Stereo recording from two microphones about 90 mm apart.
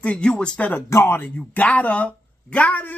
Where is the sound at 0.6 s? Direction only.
30° left (ahead or behind).